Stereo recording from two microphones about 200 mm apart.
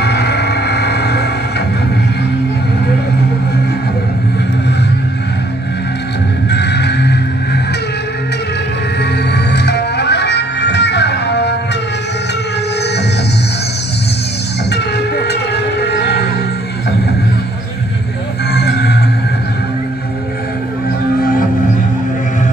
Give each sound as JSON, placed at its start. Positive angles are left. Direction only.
{"t": 0.0, "sound": "music", "side_deg": 55}
{"t": 6.5, "sound": "music", "side_deg": 60}
{"t": 9.3, "sound": "music", "side_deg": 60}
{"t": 14.7, "sound": "music", "side_deg": 55}
{"t": 18.5, "sound": "music", "side_deg": 55}
{"t": 21.2, "sound": "music", "side_deg": 45}